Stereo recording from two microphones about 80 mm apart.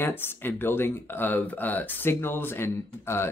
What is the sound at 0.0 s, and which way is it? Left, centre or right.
Speech, left.